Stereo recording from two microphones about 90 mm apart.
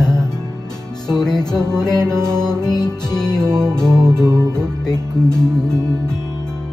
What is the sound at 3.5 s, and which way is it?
Music, 30° right (ahead or behind).